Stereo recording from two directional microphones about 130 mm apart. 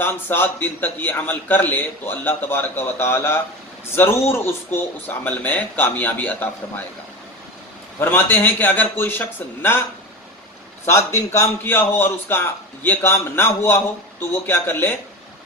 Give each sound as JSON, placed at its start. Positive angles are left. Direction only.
{"t": 0.0, "sound": "a man's voice", "side_deg": 15}
{"t": 8.0, "sound": "a man's voice", "side_deg": 15}
{"t": 10.9, "sound": "a man's voice", "side_deg": 20}